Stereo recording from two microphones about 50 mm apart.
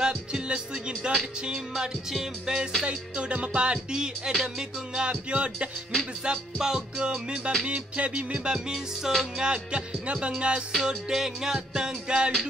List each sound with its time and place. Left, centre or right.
0.0 s music: centre
2.8 s speech: centre
4.3 s music: centre
4.9 s speech: centre
6.2 s music: centre
7.6 s speech: right
8.7 s music: centre
9.4 s speech: centre
10.8 s music: centre